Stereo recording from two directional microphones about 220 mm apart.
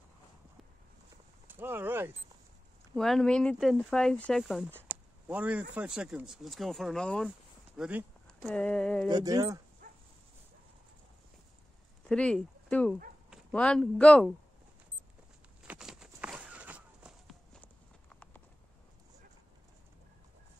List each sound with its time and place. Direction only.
1.5 s speech: 10° right (ahead or behind)
2.9 s speech: centre (ahead or behind)
9.1 s speech: 15° right (ahead or behind)
9.8 s dog: 35° right (ahead or behind)
12.1 s speech: 5° left (ahead or behind)
15.6 s walk: 5° right (ahead or behind)